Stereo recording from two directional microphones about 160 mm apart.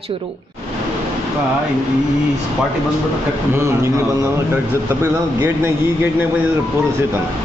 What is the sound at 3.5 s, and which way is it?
A man's voice, 20° right (ahead or behind).